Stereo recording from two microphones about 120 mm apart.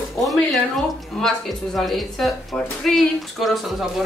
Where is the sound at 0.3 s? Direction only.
Centre (ahead or behind).